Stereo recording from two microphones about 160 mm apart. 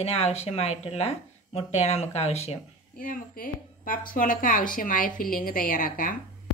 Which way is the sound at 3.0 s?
60° left (ahead or behind).